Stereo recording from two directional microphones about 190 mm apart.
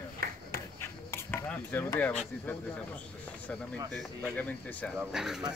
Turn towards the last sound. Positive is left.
turn(degrees=0)  # may be behind; listen again after turning